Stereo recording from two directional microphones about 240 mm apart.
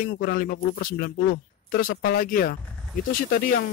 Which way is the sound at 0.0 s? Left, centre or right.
Left.